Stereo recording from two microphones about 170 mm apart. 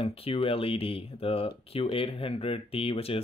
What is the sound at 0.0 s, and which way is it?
Speech, 35° left (ahead or behind).